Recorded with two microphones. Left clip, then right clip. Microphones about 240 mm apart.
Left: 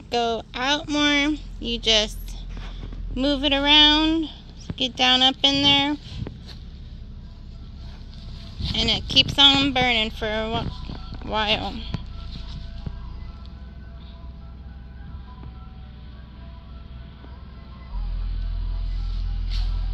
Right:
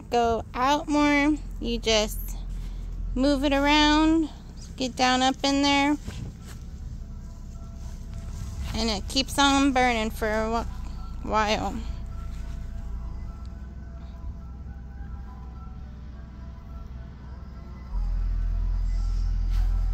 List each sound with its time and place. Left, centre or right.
0.1 s speech: centre
3.2 s speech: centre
8.7 s speech: right
9.3 s speech: centre